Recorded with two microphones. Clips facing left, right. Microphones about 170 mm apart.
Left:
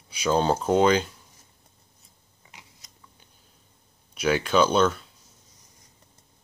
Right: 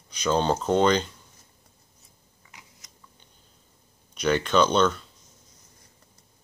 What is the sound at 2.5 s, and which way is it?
Biting, 25° left (ahead or behind).